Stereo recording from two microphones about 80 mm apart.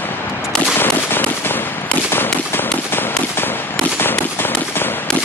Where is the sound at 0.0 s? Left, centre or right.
Left.